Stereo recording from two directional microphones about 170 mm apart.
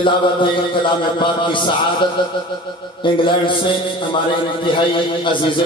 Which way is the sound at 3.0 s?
30° left (ahead or behind).